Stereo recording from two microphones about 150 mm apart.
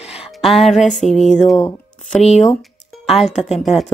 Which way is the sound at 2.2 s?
45° left (ahead or behind).